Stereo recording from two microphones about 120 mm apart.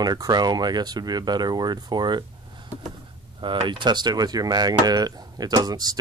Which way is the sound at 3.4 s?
40° right (ahead or behind).